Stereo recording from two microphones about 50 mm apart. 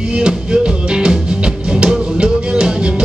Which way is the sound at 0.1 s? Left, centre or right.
Centre.